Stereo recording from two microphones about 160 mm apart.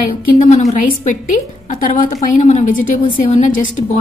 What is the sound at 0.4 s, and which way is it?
A woman's voice, 45° left (ahead or behind).